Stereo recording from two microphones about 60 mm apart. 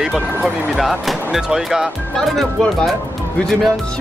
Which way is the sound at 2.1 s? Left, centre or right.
Centre.